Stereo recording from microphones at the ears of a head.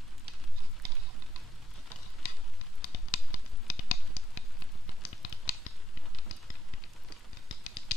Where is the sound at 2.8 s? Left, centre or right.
Left.